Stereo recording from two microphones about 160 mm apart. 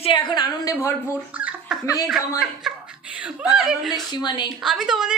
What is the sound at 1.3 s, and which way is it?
Laughter, 10° right (ahead or behind).